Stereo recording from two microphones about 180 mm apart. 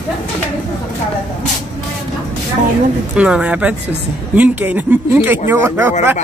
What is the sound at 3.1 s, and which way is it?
Speech, 5° right (ahead or behind).